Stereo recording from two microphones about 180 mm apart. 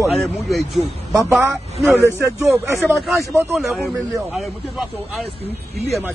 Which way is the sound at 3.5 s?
Centre (ahead or behind).